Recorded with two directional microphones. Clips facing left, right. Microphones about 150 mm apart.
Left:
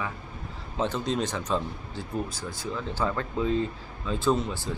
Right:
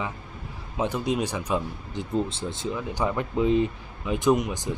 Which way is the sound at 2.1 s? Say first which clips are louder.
Right 6 dB; 25° right (ahead or behind).